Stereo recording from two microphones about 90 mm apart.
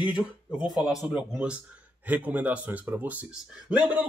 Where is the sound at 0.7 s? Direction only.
5° right (ahead or behind).